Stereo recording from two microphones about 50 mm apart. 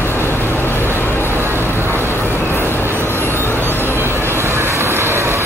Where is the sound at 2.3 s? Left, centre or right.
Left.